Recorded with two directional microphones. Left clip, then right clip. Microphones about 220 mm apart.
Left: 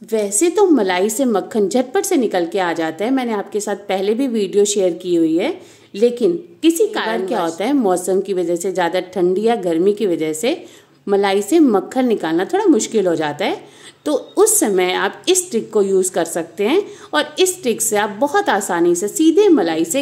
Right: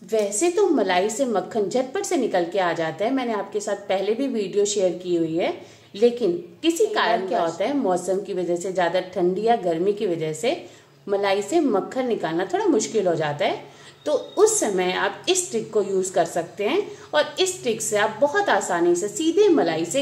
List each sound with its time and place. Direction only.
0.1 s a woman's voice: 50° left (ahead or behind)